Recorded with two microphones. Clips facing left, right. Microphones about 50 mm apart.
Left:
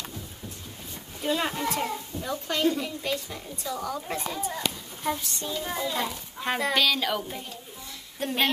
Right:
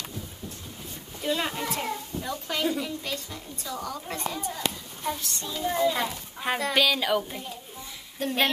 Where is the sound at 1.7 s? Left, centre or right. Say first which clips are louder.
Left 1 dB; centre.